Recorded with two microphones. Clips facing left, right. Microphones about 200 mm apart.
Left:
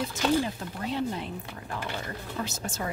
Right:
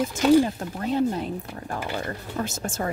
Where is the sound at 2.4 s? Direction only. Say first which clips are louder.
Right 5 dB; 50° right (ahead or behind).